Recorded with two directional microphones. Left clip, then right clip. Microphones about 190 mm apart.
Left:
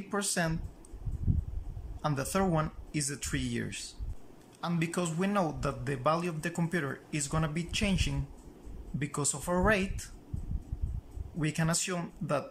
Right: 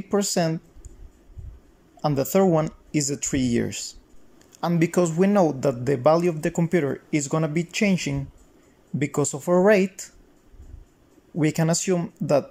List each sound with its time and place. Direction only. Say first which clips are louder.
0.1 s a man's voice: right 9 dB; 25° right (ahead or behind)
2.0 s a man's voice: right 10 dB; 25° right (ahead or behind)
11.3 s a man's voice: right 10 dB; 30° right (ahead or behind)